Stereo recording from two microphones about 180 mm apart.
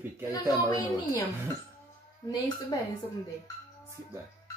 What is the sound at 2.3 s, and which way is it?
Speech, 20° left (ahead or behind).